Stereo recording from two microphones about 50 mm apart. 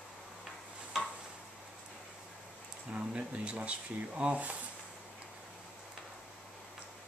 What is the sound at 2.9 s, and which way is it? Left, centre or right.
Speech, right.